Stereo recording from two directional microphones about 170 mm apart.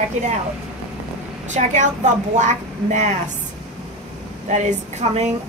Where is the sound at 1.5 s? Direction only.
45° right (ahead or behind).